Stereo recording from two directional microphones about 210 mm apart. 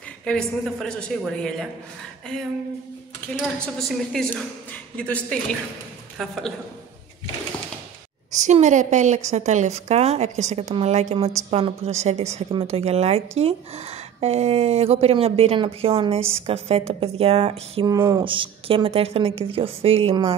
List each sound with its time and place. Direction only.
0.2 s a woman's voice: 5° left (ahead or behind)
3.3 s a woman's voice: centre (ahead or behind)
8.3 s a woman's voice: 35° right (ahead or behind)
17.9 s a woman's voice: 15° right (ahead or behind)